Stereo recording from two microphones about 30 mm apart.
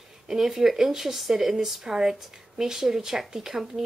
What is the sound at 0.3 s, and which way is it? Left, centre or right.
Speech, centre.